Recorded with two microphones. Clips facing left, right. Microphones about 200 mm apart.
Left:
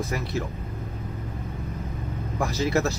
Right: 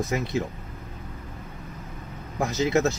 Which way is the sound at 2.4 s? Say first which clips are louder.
Right 2 dB; 20° right (ahead or behind).